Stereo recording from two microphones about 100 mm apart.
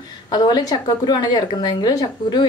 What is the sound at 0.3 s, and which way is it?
A woman's voice, 45° left (ahead or behind).